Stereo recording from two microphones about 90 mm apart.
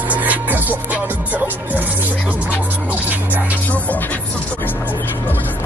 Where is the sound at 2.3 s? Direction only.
15° right (ahead or behind).